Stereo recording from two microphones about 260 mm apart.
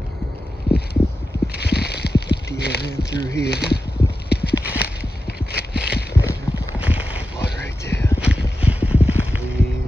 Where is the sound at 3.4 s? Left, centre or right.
Left.